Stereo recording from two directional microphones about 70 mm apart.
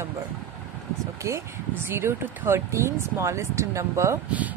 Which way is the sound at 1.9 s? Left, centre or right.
Right.